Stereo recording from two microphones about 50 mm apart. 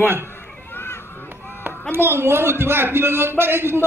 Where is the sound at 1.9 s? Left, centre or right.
Right.